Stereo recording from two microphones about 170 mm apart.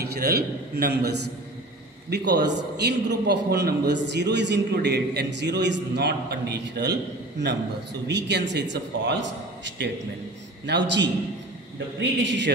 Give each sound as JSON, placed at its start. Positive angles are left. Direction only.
{"t": 0.0, "sound": "a man's voice", "side_deg": -70}
{"t": 3.9, "sound": "a man's voice", "side_deg": -90}
{"t": 10.7, "sound": "a man's voice", "side_deg": -90}